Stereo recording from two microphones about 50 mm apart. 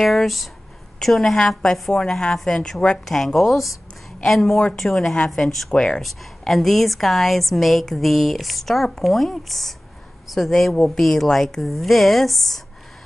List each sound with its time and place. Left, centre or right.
0.0 s a woman's voice: centre
3.3 s a woman's voice: centre
5.7 s a woman's voice: centre
6.0 s a woman's voice: centre